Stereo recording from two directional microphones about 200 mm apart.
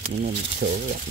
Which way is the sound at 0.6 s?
45° right (ahead or behind).